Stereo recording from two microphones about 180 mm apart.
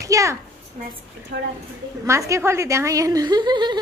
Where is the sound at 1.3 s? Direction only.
60° right (ahead or behind).